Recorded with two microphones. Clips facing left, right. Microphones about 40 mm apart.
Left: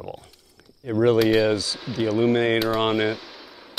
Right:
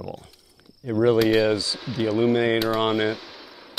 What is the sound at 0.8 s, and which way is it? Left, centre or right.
Speech, centre.